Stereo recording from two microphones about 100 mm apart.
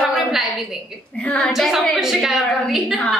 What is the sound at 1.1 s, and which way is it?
A woman's voice, 10° left (ahead or behind).